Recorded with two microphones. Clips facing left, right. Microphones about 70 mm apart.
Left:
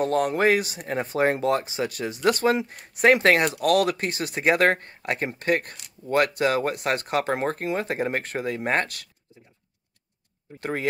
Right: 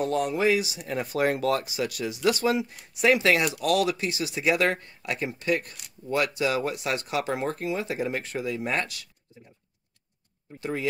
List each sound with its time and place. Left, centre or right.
0.0 s speech: left
10.6 s speech: left